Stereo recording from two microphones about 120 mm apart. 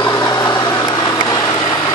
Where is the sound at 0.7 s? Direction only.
30° left (ahead or behind).